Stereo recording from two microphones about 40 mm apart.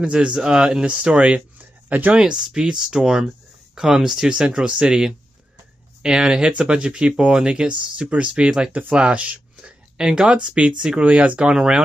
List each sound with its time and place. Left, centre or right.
0.0 s speech: right
1.0 s a sound: right
2.1 s speech: centre
8.1 s speech: right
8.5 s speech: centre
9.1 s a sound: right
9.9 s speech: centre
11.0 s speech: right
11.5 s speech: centre